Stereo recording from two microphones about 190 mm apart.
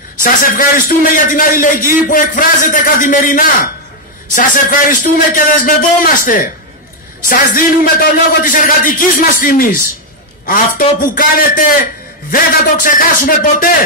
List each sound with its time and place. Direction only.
0.2 s a man's voice: 45° left (ahead or behind)